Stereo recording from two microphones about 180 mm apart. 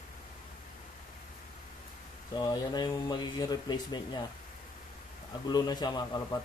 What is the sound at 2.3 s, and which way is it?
A man's voice, 20° left (ahead or behind).